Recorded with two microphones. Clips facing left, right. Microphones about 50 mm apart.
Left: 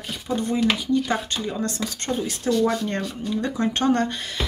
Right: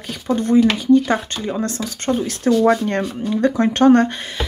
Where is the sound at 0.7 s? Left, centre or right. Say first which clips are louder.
Right 9 dB; right.